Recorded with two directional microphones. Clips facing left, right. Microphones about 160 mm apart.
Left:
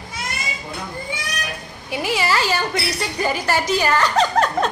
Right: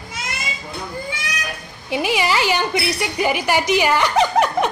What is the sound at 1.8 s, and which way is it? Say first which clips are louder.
A woman's voice: right 2 dB; 20° right (ahead or behind).